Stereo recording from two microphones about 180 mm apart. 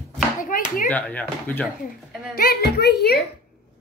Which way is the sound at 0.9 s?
10° left (ahead or behind).